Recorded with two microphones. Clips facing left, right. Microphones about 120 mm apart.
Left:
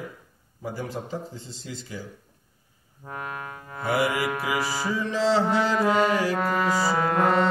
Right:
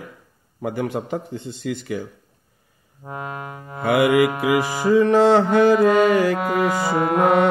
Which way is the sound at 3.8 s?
60° right (ahead or behind).